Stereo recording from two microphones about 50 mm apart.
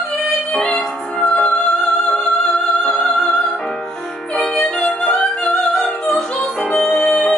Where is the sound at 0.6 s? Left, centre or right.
Centre.